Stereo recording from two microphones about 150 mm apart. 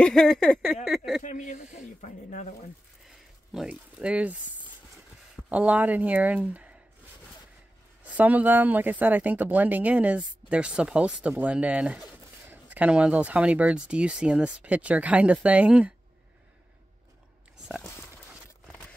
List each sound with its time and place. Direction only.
0.0 s speech: 5° left (ahead or behind)
0.8 s a sound: 5° right (ahead or behind)
1.2 s speech: 55° left (ahead or behind)
3.1 s a sound: 5° right (ahead or behind)
5.5 s speech: 10° right (ahead or behind)
8.0 s speech: 10° right (ahead or behind)